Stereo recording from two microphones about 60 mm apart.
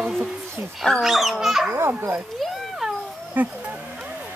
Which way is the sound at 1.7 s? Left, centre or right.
Right.